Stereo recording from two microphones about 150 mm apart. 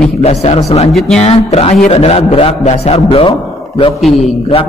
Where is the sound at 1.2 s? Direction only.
40° left (ahead or behind).